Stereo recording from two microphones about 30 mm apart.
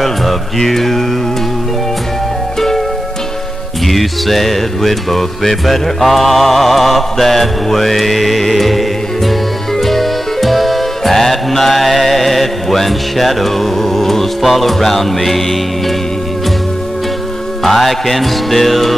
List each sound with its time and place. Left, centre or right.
0.0 s mantra: centre
3.8 s music: centre
17.6 s music: centre